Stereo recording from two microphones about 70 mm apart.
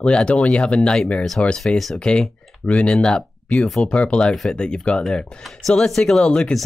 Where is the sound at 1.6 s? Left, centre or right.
Centre.